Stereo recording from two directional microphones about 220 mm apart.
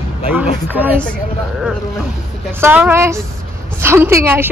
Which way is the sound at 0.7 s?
10° right (ahead or behind).